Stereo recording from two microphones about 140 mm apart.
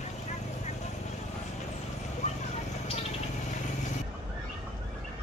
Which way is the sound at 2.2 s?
55° left (ahead or behind).